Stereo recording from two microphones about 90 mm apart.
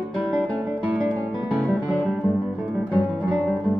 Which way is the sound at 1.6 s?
15° left (ahead or behind).